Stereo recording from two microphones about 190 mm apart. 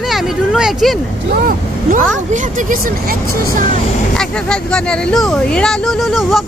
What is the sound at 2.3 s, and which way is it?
Speech, 40° right (ahead or behind).